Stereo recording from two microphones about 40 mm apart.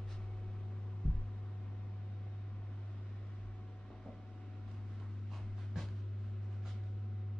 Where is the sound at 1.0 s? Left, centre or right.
Left.